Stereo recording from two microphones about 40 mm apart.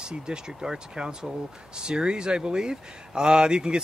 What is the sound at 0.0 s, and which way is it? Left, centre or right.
Speech, right.